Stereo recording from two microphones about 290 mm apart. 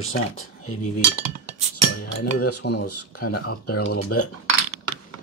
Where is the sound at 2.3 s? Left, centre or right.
Left.